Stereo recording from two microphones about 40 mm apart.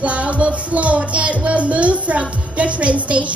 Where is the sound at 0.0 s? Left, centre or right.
Right.